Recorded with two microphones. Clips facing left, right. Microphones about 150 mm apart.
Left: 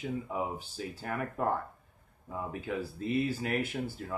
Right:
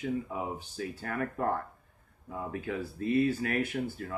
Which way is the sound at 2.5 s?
20° left (ahead or behind).